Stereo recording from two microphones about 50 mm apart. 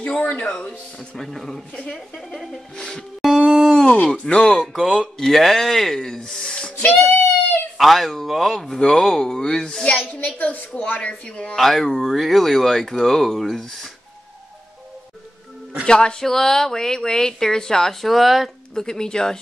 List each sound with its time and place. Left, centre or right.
0.0 s speech: left
1.1 s speech: centre
2.1 s a sound: centre
3.8 s speech: left
4.7 s speech: centre
5.2 s speech: centre
6.8 s speech: left
7.7 s speech: centre
10.2 s a woman's voice: left
11.5 s speech: centre
15.8 s speech: centre
18.8 s speech: centre